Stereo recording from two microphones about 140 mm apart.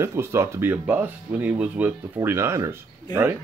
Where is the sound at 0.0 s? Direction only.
20° right (ahead or behind).